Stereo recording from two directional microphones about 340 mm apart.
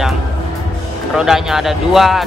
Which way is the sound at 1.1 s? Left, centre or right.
Centre.